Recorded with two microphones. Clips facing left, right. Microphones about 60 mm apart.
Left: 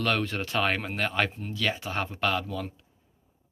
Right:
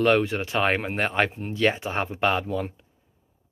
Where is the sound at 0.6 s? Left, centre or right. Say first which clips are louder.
Right 5 dB; right.